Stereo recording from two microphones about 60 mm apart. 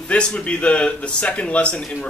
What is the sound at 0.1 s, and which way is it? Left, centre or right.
Speech, centre.